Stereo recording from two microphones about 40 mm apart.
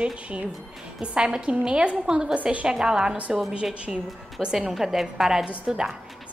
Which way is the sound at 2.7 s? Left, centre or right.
Centre.